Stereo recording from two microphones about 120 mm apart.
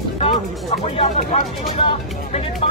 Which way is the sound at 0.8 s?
60° left (ahead or behind).